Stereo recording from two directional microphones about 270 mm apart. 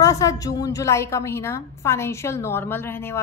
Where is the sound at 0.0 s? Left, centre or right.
Centre.